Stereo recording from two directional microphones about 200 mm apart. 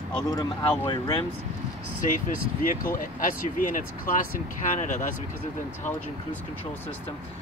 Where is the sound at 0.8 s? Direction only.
25° left (ahead or behind).